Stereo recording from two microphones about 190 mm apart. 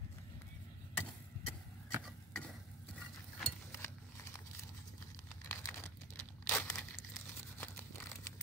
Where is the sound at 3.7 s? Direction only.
15° left (ahead or behind).